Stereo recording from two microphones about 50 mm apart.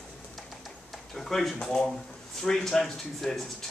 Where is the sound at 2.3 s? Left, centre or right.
Centre.